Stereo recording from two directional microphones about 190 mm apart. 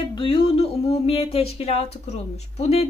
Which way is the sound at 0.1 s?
30° left (ahead or behind).